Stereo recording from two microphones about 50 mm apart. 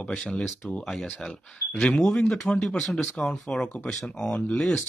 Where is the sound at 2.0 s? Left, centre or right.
Centre.